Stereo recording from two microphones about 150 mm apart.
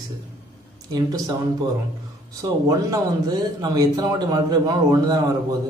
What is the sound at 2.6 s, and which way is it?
A man's voice, 25° right (ahead or behind).